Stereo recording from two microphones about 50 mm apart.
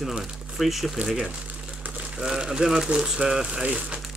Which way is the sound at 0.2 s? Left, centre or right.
Centre.